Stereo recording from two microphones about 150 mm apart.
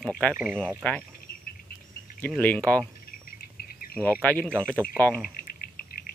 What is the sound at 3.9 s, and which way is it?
Speech, 10° right (ahead or behind).